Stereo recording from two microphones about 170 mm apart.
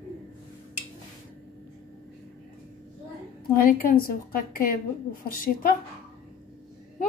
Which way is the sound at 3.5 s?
60° left (ahead or behind).